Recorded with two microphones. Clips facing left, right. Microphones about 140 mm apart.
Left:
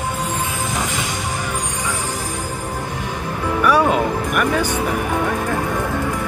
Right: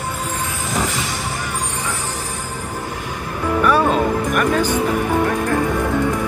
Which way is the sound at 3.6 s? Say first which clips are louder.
Even; 10° left (ahead or behind).